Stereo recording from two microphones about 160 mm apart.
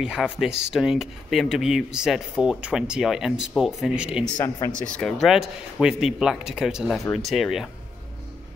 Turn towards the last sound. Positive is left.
turn(degrees=0)  # may be behind; listen again after turning